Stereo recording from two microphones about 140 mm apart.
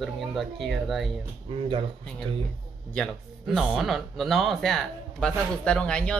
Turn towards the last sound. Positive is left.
turn(degrees=5)  # may be behind; listen again after turning